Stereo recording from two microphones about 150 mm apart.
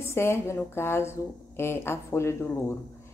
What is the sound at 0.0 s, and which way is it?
Speech, 15° left (ahead or behind).